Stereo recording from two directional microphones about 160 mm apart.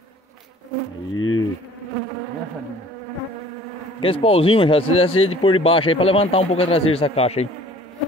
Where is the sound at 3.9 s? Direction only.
35° left (ahead or behind).